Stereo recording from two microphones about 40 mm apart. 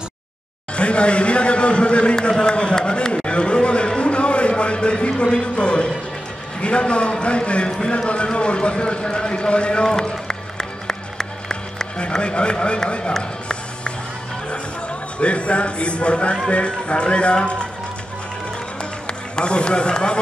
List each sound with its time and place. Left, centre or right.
0.7 s a man's voice: left
2.1 s a sound: centre
6.6 s a man's voice: left
9.8 s music: centre
12.2 s a man's voice: left
15.1 s a man's voice: left
19.3 s a man's voice: left